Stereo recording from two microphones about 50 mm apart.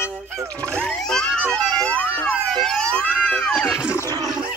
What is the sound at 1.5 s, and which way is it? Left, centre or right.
Music, left.